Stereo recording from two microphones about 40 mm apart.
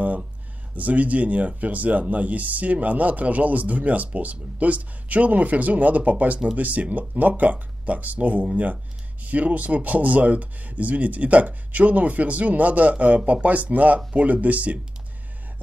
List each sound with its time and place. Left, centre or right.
0.7 s speech: right